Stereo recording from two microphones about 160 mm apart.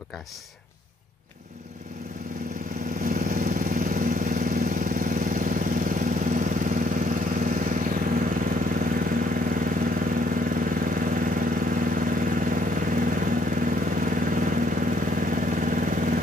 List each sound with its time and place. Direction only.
3.0 s vehicle: 65° right (ahead or behind)